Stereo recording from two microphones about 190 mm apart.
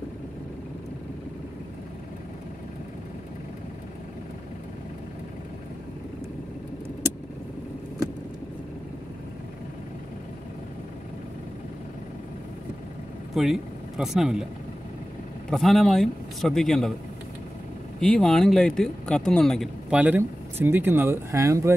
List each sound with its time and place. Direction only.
13.3 s speech: centre (ahead or behind)
15.5 s speech: centre (ahead or behind)
18.0 s speech: 5° left (ahead or behind); by 21.7 s 15° right (ahead or behind)